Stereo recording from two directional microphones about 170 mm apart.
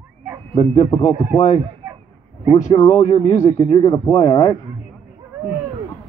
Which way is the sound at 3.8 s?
20° left (ahead or behind).